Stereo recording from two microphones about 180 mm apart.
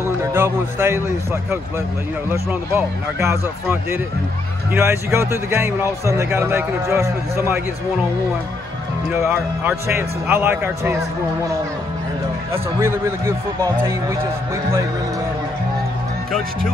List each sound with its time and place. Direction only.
0.0 s speech: 15° right (ahead or behind)
9.1 s speech: 15° right (ahead or behind)
12.5 s speech: 15° right (ahead or behind)